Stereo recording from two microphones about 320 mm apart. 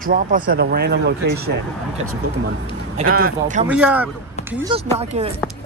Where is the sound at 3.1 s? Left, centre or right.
Right.